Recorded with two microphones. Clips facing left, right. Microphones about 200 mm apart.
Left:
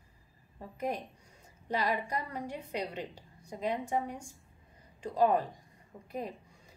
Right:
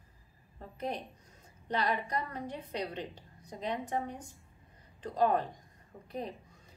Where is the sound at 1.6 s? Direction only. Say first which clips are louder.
Even; 10° left (ahead or behind).